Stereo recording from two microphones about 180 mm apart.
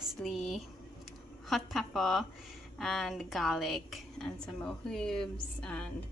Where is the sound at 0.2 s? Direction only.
Centre (ahead or behind).